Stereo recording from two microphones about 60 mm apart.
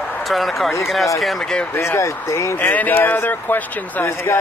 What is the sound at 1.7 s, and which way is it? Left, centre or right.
Speech, left.